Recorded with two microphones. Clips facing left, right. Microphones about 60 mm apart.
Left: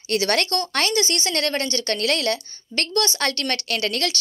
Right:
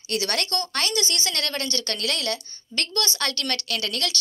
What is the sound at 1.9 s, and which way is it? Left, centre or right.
A woman's voice, left.